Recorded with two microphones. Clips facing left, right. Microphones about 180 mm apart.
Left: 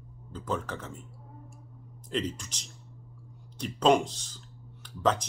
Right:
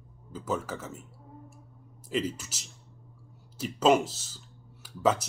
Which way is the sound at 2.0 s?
5° right (ahead or behind).